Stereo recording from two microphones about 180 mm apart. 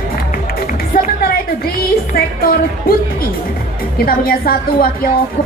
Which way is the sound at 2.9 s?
55° left (ahead or behind).